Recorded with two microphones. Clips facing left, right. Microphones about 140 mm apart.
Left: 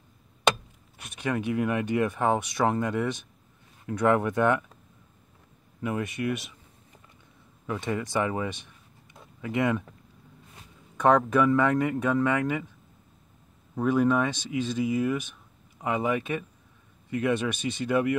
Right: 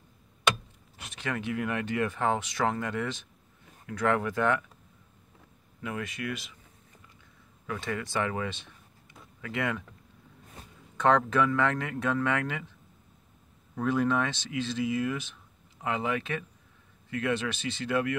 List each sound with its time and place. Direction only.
1.2 s speech: 15° left (ahead or behind)
5.9 s speech: 20° left (ahead or behind)
7.6 s speech: 20° left (ahead or behind)
11.0 s speech: 10° left (ahead or behind)
13.7 s speech: 15° left (ahead or behind)